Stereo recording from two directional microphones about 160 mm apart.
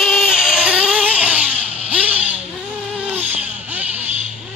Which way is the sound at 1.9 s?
10° right (ahead or behind).